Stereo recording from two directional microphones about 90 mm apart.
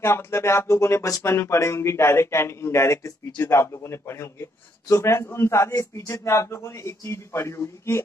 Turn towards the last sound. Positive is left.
turn(degrees=30)  # may be behind; listen again after turning